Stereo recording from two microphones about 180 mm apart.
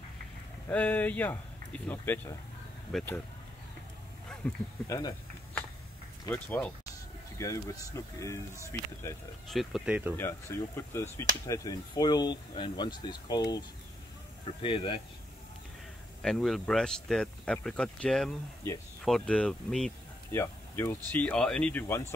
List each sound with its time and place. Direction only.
0.7 s speech: 10° left (ahead or behind)
4.3 s speech: 10° left (ahead or behind)
6.3 s speech: 10° left (ahead or behind)
9.5 s speech: centre (ahead or behind)
10.1 s speech: 15° left (ahead or behind); by 15.0 s 30° left (ahead or behind)
16.2 s speech: centre (ahead or behind)